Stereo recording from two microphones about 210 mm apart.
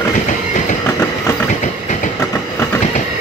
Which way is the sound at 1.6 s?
35° left (ahead or behind).